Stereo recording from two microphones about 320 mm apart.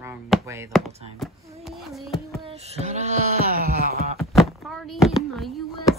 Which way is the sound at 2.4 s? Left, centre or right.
Centre.